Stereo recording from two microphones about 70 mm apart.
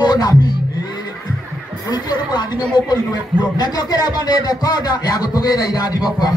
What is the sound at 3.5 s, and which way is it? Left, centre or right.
Speech, left.